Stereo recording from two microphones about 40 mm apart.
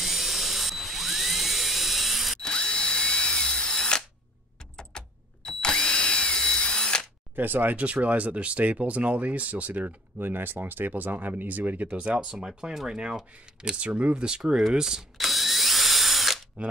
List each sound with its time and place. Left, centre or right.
0.0 s a sound: centre
2.4 s drill: left
7.3 s speech: right
7.7 s speech: right
10.1 s speech: right
12.4 s speech: centre
13.8 s speech: right
14.7 s speech: centre
15.1 s drill: centre
16.6 s speech: right